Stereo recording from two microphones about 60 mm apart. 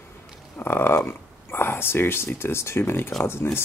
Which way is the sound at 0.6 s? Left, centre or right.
Left.